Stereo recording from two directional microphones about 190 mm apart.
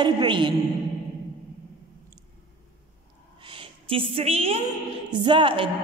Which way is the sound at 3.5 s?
30° right (ahead or behind).